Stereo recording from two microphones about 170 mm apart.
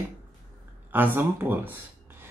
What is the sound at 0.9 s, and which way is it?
Speech, 10° right (ahead or behind).